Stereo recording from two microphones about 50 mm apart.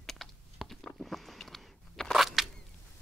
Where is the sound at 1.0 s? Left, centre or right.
Centre.